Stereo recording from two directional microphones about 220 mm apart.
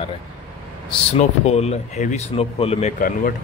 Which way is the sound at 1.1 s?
30° left (ahead or behind).